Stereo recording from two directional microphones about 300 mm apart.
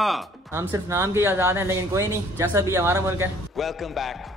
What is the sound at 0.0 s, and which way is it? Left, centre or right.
Speech, centre.